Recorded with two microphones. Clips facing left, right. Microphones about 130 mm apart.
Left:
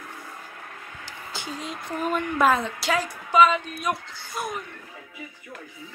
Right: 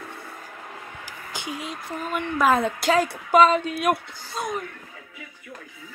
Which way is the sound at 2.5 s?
50° right (ahead or behind).